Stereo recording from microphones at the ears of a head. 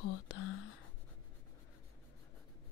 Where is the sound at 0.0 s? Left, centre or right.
Left.